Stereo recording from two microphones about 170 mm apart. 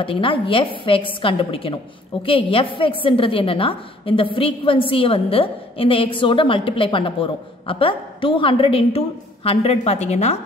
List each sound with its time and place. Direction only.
0.0 s a woman's voice: 30° left (ahead or behind)